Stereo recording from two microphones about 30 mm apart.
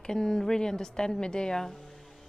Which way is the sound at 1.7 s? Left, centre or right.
Centre.